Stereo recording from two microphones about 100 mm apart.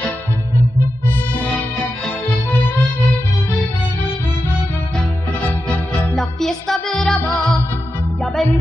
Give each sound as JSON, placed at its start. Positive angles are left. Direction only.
{"t": 5.9, "sound": "music", "side_deg": 5}